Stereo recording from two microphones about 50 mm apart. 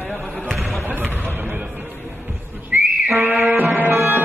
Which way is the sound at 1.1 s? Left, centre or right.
Right.